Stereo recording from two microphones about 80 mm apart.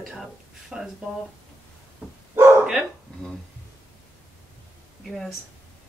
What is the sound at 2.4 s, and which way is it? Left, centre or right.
Dog, right.